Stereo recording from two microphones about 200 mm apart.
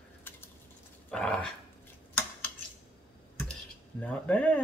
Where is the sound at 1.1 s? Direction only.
5° left (ahead or behind).